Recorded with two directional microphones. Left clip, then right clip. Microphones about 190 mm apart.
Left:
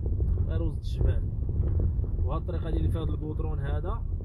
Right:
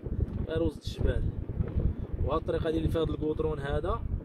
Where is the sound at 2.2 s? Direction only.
15° right (ahead or behind).